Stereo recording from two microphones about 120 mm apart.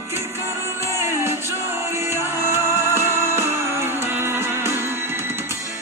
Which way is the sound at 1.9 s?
20° right (ahead or behind).